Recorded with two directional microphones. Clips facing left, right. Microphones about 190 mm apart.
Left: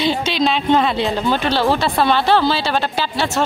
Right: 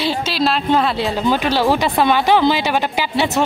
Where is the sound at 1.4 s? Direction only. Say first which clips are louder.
Right 1 dB; 10° right (ahead or behind).